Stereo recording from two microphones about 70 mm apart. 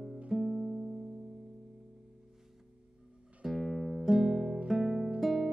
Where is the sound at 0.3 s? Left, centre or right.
Centre.